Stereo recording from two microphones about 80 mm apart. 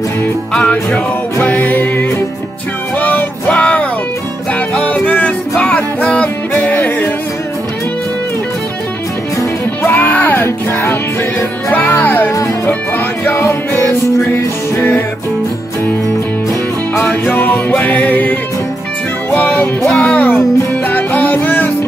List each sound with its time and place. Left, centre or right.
0.5 s music: centre
9.8 s music: left
16.9 s music: left
19.3 s music: left